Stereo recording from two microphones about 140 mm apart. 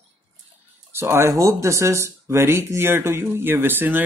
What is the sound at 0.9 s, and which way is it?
Speech, 15° right (ahead or behind).